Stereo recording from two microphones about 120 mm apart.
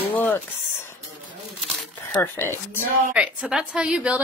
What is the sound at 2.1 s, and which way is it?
Speech, 15° left (ahead or behind).